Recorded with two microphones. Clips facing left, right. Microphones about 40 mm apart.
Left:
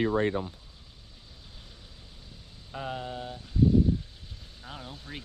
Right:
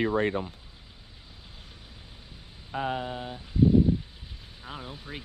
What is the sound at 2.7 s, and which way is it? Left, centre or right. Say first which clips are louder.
Speech: right 5 dB; right.